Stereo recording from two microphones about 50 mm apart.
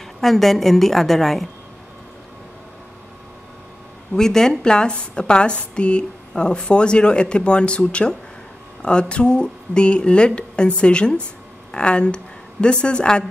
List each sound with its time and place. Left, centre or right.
0.2 s a woman's voice: centre
4.1 s a woman's voice: centre